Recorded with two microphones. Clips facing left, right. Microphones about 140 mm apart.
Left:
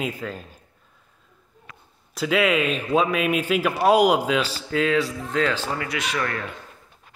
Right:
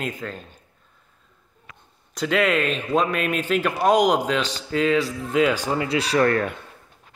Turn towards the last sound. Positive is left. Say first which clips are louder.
# right 8 dB
turn(degrees=-45)  # may be behind; listen again after turning